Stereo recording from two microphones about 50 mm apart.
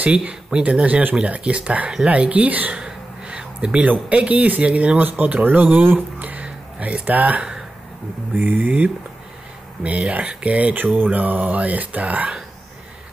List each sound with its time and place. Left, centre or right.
0.0 s speech: right
2.8 s a sound: centre
3.9 s speech: right
6.1 s music: right
8.4 s speech: right